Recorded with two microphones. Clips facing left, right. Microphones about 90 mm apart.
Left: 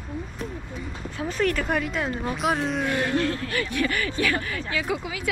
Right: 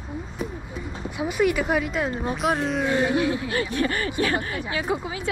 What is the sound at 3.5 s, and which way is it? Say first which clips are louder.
Speech: right 2 dB; 30° right (ahead or behind).